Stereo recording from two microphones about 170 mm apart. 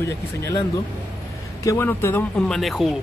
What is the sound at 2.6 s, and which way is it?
Speech, centre (ahead or behind).